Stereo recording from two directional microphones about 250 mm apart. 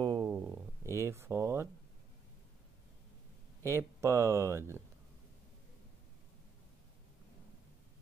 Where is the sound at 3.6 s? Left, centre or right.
Centre.